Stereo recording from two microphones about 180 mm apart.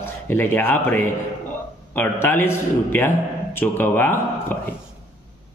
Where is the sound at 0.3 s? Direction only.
10° left (ahead or behind).